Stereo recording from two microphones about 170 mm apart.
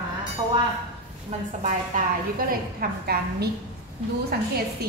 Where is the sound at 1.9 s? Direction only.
50° right (ahead or behind).